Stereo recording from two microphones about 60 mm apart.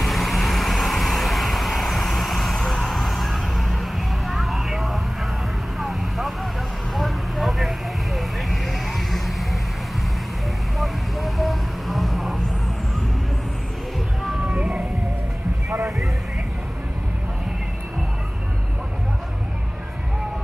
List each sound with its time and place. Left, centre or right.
0.0 s vehicle: centre
10.8 s vehicle: centre
14.5 s vehicle: centre